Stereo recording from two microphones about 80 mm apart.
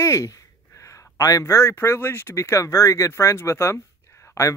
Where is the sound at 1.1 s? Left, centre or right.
Left.